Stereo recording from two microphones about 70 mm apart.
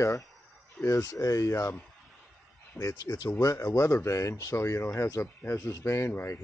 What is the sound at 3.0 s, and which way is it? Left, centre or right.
Speech, left.